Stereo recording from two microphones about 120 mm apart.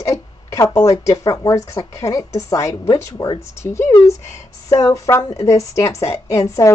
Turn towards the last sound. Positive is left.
turn(degrees=25)  # may be behind; listen again after turning